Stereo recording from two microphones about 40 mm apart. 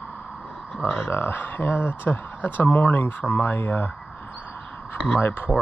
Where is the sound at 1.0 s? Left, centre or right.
Left.